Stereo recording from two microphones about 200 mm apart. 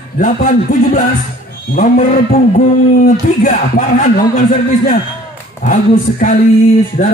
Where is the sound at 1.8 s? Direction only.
35° left (ahead or behind).